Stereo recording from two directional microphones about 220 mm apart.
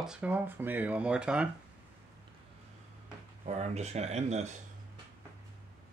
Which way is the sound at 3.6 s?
30° right (ahead or behind).